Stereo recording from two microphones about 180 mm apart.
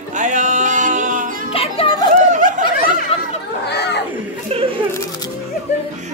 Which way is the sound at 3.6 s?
65° left (ahead or behind).